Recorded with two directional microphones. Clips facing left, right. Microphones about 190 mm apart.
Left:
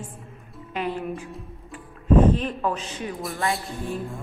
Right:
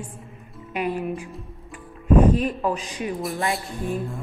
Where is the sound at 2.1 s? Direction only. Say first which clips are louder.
Right 1 dB; 10° right (ahead or behind).